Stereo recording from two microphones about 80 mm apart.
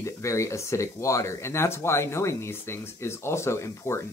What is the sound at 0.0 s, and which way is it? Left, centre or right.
Speech, left.